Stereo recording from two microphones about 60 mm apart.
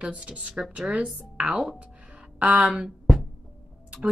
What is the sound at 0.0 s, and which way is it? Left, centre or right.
A woman's voice, right.